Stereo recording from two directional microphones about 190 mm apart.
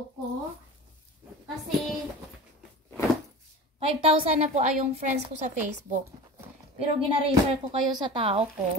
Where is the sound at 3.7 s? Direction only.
30° right (ahead or behind).